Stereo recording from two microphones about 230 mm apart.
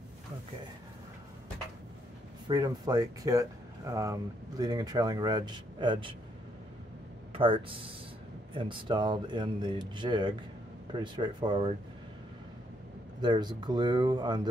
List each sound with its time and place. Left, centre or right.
2.4 s speech: centre
7.3 s speech: right
13.2 s speech: centre